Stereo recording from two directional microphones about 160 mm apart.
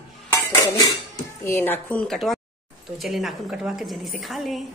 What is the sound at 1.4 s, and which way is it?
A woman's voice, 15° left (ahead or behind).